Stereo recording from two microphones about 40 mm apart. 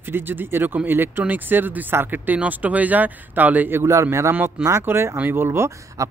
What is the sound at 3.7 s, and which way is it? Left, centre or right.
Speech, right.